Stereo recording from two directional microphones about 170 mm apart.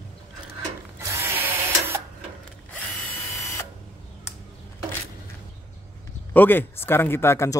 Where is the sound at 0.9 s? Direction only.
15° right (ahead or behind).